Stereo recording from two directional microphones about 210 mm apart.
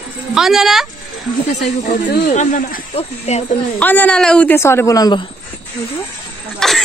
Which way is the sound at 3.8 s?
10° left (ahead or behind).